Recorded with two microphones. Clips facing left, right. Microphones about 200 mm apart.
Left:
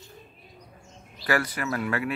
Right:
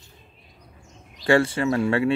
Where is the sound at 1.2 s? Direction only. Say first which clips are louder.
Right 8 dB; 25° right (ahead or behind).